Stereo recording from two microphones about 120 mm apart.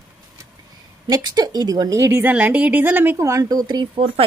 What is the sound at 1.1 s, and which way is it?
A woman's voice, 35° right (ahead or behind).